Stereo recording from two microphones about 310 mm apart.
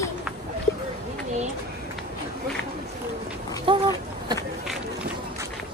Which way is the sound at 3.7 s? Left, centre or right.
Centre.